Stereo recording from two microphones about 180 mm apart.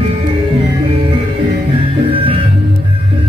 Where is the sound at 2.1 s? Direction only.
30° right (ahead or behind).